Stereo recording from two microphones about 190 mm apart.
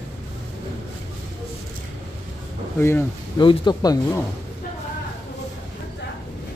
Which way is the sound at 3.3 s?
25° left (ahead or behind).